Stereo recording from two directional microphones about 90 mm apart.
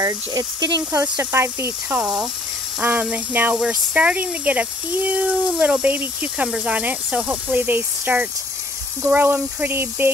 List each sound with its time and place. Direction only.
0.0 s speech: 45° right (ahead or behind)
1.0 s speech: 25° right (ahead or behind)
1.9 s speech: 5° right (ahead or behind); by 10.1 s 25° right (ahead or behind)